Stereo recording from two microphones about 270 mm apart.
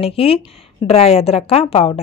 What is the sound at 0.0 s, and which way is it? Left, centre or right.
A woman's voice, left.